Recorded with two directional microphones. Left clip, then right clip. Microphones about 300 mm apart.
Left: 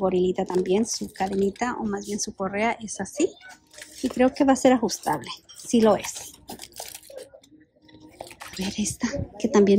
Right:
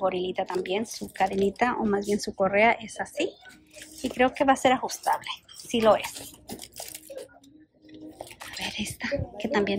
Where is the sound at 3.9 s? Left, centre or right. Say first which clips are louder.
Left 4 dB; centre.